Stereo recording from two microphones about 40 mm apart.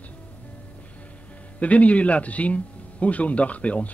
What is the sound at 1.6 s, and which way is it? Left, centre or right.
A man's voice, left.